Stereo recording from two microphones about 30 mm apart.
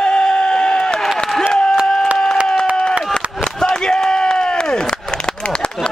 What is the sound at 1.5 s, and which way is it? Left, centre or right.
Applause, left.